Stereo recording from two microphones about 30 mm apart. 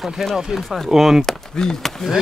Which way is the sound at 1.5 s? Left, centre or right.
Centre.